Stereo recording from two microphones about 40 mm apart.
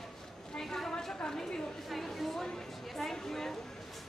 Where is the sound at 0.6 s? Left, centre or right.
Centre.